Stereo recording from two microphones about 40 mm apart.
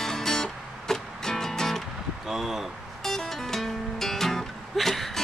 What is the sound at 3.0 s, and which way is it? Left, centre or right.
Music, centre.